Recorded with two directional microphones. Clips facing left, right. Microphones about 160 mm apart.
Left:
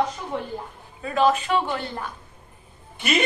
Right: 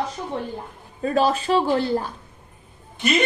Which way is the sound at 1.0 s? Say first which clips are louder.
Right 1 dB; 40° right (ahead or behind).